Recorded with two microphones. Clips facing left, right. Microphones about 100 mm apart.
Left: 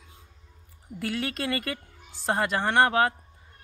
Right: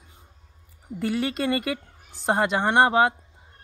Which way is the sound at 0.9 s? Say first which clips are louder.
Right 5 dB; 20° right (ahead or behind).